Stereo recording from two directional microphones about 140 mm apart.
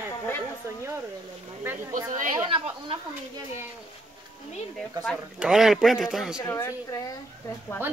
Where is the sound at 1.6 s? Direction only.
15° right (ahead or behind).